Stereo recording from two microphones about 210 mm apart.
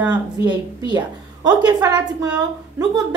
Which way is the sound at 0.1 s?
20° right (ahead or behind).